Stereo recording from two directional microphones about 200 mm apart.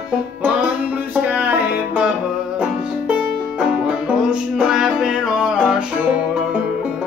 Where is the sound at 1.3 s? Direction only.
10° right (ahead or behind).